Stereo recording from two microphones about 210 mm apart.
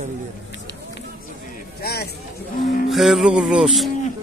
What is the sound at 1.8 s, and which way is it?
Speech, 50° left (ahead or behind).